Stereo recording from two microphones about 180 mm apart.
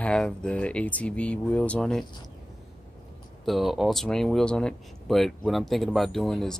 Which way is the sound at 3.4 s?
Centre (ahead or behind).